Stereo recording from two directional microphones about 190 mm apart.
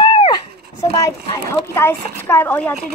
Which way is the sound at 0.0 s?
25° left (ahead or behind).